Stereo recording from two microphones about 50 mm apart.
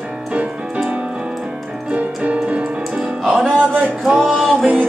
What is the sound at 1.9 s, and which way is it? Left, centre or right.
Music, right.